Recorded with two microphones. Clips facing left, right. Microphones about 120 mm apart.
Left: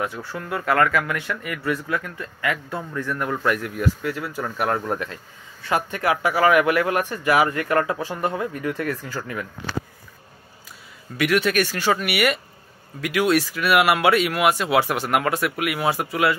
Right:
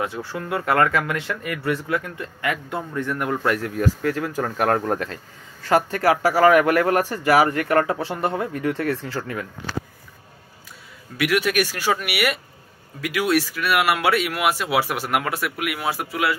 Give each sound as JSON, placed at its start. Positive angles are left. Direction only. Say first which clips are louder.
{"t": 0.0, "sound": "speech", "louder": "right 1 dB", "side_deg": -25}
{"t": 11.1, "sound": "speech", "louder": "left 1 dB", "side_deg": -5}